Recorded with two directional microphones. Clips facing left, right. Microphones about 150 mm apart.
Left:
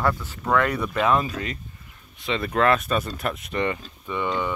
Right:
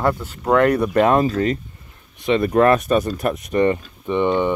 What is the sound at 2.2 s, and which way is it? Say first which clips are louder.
Speech: right 7 dB; 20° right (ahead or behind).